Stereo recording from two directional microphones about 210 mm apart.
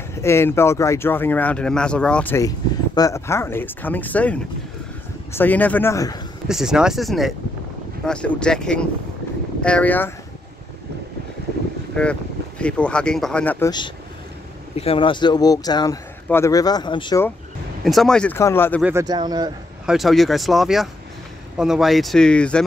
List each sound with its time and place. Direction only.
0.1 s speech: 10° left (ahead or behind)
6.4 s speech: 5° right (ahead or behind)
11.9 s speech: 5° left (ahead or behind)
13.7 s speech: 20° left (ahead or behind)
17.8 s speech: centre (ahead or behind)
18.8 s speech: 10° right (ahead or behind)
19.0 s speech: 20° right (ahead or behind)
19.9 s speech: centre (ahead or behind)